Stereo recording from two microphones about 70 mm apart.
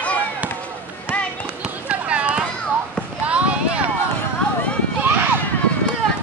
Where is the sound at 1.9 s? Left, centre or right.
Centre.